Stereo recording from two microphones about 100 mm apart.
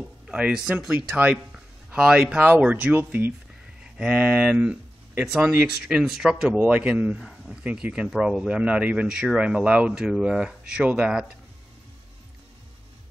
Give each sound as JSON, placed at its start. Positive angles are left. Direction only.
{"t": 0.3, "sound": "speech", "side_deg": -10}